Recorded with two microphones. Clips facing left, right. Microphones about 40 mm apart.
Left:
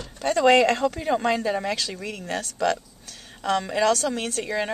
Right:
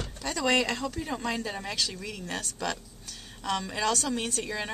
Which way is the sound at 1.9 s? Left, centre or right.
Left.